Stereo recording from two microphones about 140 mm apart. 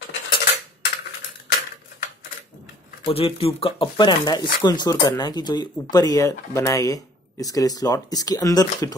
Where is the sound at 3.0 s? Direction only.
45° left (ahead or behind).